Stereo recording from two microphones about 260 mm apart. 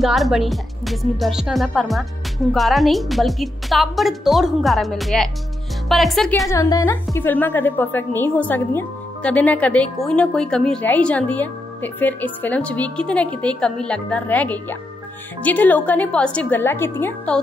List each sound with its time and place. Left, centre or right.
0.0 s speech: centre
6.5 s a woman's voice: centre